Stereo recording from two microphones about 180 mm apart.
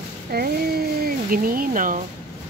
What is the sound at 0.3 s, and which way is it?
Speech, 60° right (ahead or behind).